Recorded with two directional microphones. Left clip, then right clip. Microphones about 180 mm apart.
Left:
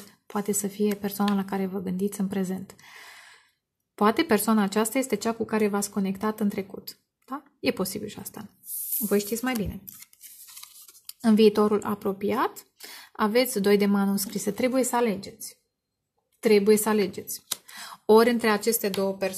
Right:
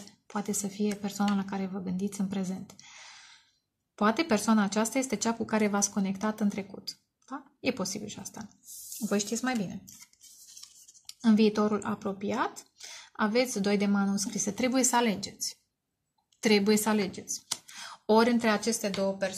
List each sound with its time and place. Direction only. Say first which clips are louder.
0.3 s speech: left 5 dB; 30° left (ahead or behind)
5.2 s speech: left 3 dB; 20° left (ahead or behind); by 9.6 s 35° left (ahead or behind)
11.1 s speech: left 6 dB; 35° left (ahead or behind)
14.6 s speech: left 3 dB; 15° left (ahead or behind); by 18.9 s 40° left (ahead or behind)